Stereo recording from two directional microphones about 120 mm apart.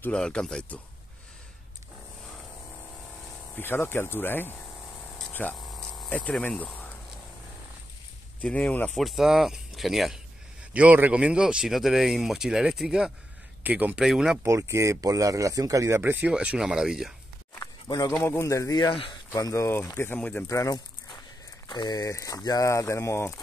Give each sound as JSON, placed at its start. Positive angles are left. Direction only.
{"t": 0.0, "sound": "speech", "side_deg": 10}
{"t": 3.5, "sound": "speech", "side_deg": 20}
{"t": 8.4, "sound": "speech", "side_deg": 10}
{"t": 8.9, "sound": "speech", "side_deg": 0}
{"t": 10.7, "sound": "speech", "side_deg": -10}
{"t": 14.4, "sound": "speech", "side_deg": -25}
{"t": 16.0, "sound": "speech", "side_deg": -15}
{"t": 17.6, "sound": "a sound", "side_deg": 30}
{"t": 18.1, "sound": "speech", "side_deg": 20}
{"t": 18.8, "sound": "speech", "side_deg": 40}
{"t": 19.3, "sound": "speech", "side_deg": 25}
{"t": 20.4, "sound": "speech", "side_deg": 25}
{"t": 21.6, "sound": "speech", "side_deg": 35}